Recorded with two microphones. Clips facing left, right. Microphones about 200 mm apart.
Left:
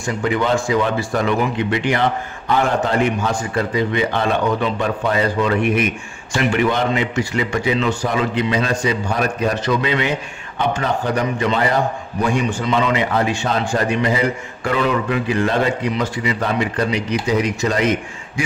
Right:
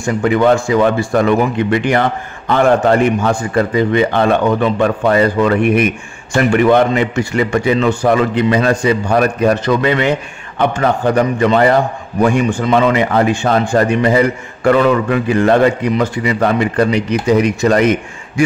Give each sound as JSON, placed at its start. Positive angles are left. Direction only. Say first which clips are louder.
{"t": 0.2, "sound": "a man's voice", "louder": "right 7 dB", "side_deg": -55}